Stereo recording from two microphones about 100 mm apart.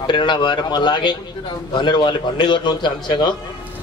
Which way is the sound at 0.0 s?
50° left (ahead or behind).